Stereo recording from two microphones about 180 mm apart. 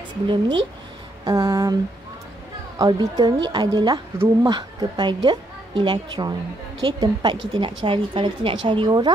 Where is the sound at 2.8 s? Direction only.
20° right (ahead or behind).